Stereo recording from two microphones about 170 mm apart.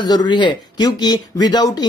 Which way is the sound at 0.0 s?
25° left (ahead or behind).